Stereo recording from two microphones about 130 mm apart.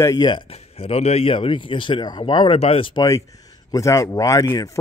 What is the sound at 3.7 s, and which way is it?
Speech, 25° left (ahead or behind).